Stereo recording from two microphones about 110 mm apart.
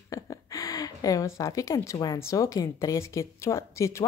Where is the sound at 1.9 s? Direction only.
35° left (ahead or behind).